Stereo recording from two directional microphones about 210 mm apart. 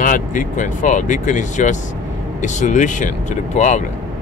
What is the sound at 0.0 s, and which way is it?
Speech, 40° left (ahead or behind).